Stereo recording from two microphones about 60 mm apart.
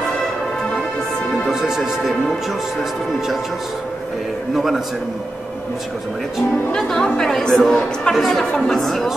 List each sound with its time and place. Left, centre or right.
1.5 s speech: centre
4.6 s speech: centre
6.7 s a woman's voice: centre